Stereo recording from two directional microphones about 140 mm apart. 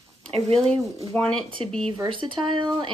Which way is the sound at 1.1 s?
10° left (ahead or behind).